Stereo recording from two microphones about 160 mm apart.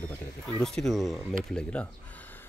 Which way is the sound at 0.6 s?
Centre (ahead or behind).